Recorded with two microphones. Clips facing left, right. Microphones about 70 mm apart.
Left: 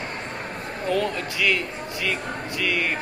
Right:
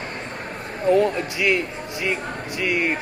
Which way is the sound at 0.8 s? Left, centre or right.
Right.